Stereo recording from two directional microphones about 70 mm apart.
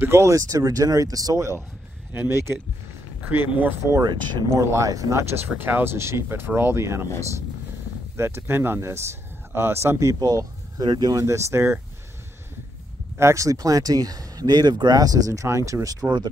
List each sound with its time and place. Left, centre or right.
0.0 s speech: right
2.1 s speech: right
4.0 s speech: right
4.6 s speech: right
5.3 s speech: right
8.2 s speech: right
10.2 s speech: right
13.2 s speech: right
15.4 s speech: right